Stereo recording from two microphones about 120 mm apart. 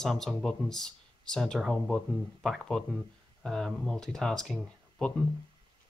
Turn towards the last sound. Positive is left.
turn(degrees=10)  # may be behind; listen again after turning